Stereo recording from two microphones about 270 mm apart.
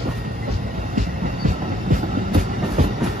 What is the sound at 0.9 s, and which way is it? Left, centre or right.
Train, right.